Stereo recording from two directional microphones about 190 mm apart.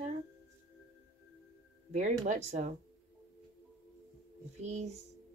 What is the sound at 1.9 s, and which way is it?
Speech, 40° right (ahead or behind).